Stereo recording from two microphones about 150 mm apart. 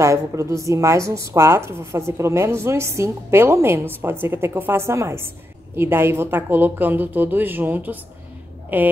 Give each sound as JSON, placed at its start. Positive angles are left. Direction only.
{"t": 0.0, "sound": "a woman's voice", "side_deg": -20}